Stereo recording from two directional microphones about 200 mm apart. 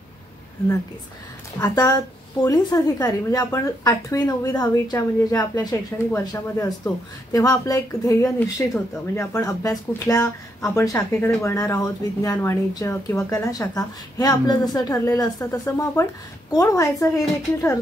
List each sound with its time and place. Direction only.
1.6 s speech: 20° left (ahead or behind)